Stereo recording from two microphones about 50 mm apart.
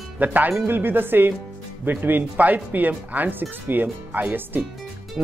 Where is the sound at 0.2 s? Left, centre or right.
Right.